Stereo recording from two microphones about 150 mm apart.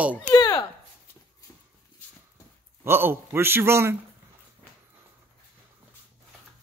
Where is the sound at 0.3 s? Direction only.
25° left (ahead or behind).